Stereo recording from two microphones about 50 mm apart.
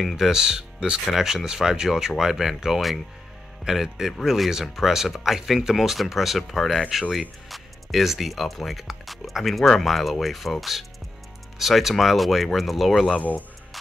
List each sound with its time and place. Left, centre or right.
0.0 s speech: centre
0.3 s speech: centre